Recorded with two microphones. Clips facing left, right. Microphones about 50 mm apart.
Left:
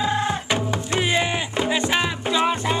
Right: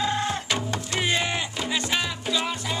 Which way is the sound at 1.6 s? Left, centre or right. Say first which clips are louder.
Left 7 dB; left.